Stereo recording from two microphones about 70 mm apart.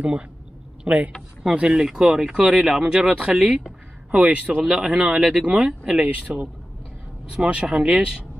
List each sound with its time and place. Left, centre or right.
0.8 s speech: centre
7.2 s speech: centre